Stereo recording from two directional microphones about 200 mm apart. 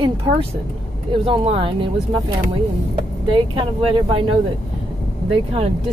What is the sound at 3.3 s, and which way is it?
Speech, 25° right (ahead or behind).